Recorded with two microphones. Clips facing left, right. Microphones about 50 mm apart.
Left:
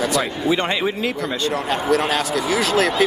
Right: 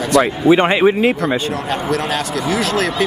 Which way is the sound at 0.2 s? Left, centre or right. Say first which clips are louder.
Right 8 dB; right.